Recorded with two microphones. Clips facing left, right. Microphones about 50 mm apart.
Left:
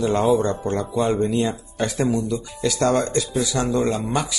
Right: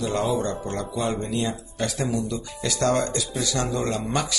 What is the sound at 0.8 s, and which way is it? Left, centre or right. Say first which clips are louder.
Speech: left 6 dB; centre.